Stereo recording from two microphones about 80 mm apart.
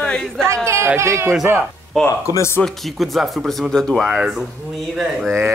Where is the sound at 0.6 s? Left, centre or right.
Right.